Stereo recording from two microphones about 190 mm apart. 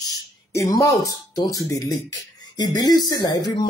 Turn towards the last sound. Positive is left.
turn(degrees=20)  # may be behind; listen again after turning